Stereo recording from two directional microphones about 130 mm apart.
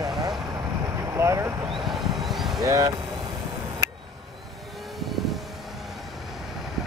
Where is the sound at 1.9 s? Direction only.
Centre (ahead or behind).